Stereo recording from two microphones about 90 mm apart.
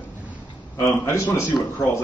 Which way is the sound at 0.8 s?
35° left (ahead or behind).